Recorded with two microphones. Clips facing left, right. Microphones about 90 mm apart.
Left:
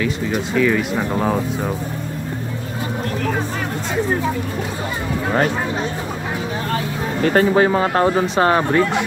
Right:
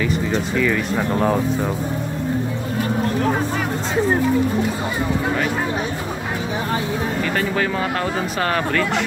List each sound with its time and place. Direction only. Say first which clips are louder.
0.3 s speech: left 5 dB; 5° left (ahead or behind)
7.2 s speech: left 10 dB; 40° left (ahead or behind); by 9.0 s 25° left (ahead or behind)